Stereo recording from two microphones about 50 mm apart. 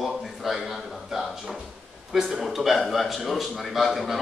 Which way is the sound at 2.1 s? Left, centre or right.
Centre.